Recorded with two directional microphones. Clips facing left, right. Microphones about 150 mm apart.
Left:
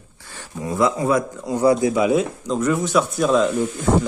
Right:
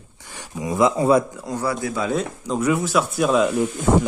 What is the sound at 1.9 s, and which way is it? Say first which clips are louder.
Speech: left 6 dB; 15° left (ahead or behind).